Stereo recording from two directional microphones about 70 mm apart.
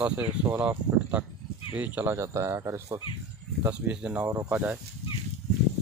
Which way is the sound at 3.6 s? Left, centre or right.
Right.